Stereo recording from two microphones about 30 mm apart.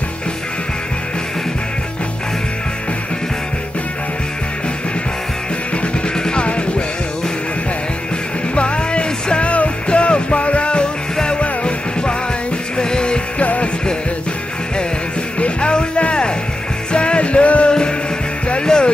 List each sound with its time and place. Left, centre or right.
6.1 s music: left
6.4 s music: left
8.5 s music: left
13.4 s music: left
15.3 s music: left
18.6 s music: left